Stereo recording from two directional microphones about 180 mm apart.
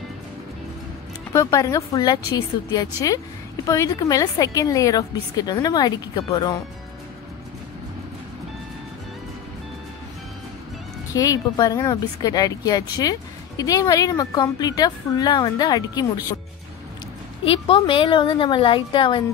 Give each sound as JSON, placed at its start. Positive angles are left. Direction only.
{"t": 1.3, "sound": "a woman's voice", "side_deg": 20}
{"t": 11.1, "sound": "a woman's voice", "side_deg": 20}
{"t": 17.5, "sound": "a woman's voice", "side_deg": 30}